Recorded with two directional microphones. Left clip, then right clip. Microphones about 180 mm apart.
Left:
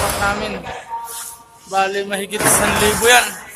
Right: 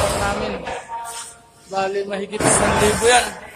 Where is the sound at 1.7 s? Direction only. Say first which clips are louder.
Left 4 dB; 15° left (ahead or behind).